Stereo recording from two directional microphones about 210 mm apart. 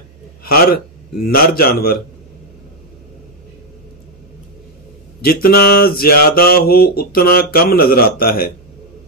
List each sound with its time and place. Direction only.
0.4 s a man's voice: 45° left (ahead or behind)
1.2 s mantra: 45° left (ahead or behind)
5.2 s mantra: 45° left (ahead or behind)